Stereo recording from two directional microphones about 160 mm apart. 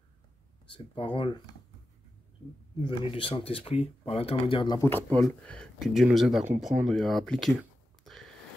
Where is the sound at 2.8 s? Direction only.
35° left (ahead or behind).